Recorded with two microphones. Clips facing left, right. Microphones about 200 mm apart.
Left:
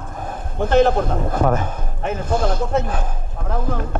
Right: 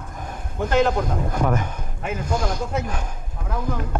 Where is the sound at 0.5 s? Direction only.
30° left (ahead or behind).